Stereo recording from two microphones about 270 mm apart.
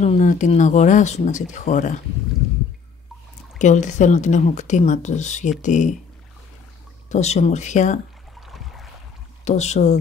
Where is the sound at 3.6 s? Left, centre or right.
Left.